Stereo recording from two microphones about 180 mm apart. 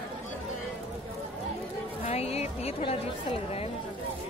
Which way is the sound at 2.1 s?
35° left (ahead or behind).